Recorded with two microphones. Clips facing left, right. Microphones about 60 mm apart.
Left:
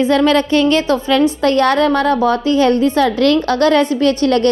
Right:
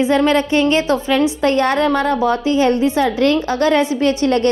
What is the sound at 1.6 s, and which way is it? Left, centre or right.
Speech, left.